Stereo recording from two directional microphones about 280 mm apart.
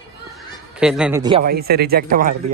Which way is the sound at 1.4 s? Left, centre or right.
Right.